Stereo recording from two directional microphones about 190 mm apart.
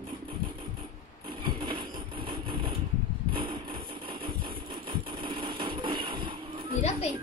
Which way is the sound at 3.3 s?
25° right (ahead or behind).